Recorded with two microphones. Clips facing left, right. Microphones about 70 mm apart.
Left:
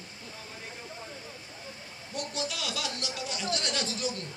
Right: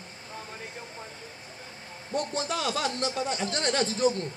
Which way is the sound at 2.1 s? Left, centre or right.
Right.